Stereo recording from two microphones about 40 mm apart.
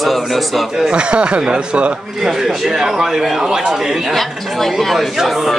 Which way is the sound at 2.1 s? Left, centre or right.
Centre.